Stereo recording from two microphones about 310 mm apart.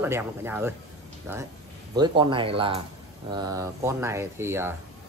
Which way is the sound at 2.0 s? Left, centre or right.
Centre.